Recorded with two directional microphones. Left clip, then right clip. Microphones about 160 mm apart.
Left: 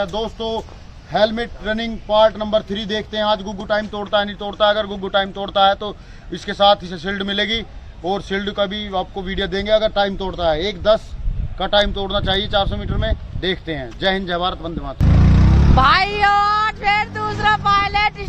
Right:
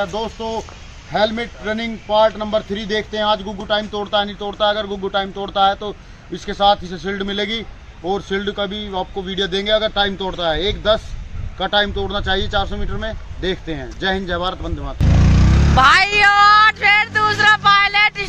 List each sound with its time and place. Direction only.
0.0 s a man's voice: 25° left (ahead or behind); by 18.2 s 10° left (ahead or behind)